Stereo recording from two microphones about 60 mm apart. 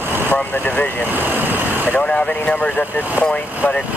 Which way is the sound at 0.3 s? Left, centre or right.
Left.